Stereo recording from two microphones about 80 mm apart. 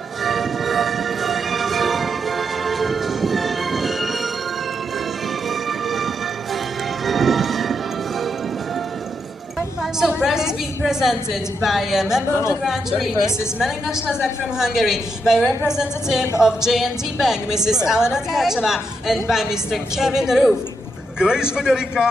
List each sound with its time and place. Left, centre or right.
0.2 s music: centre
5.5 s music: centre
10.2 s a sound: centre
10.9 s a woman's voice: centre
12.3 s speech: left
13.6 s a woman's voice: centre